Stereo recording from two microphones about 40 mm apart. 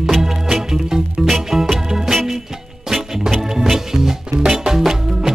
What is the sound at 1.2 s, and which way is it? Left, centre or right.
Music, centre.